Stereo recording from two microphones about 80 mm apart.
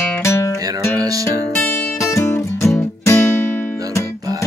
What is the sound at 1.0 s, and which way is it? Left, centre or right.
Music, right.